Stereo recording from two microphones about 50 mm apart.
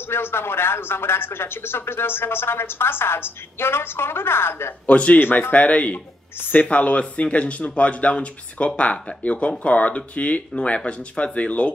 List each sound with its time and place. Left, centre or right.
0.1 s speech: left
4.8 s speech: left
5.2 s speech: left
5.5 s speech: left